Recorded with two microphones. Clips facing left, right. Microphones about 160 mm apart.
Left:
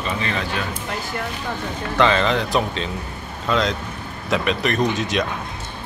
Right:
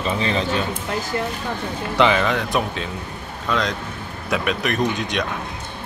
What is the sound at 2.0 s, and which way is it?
Speech, 10° right (ahead or behind).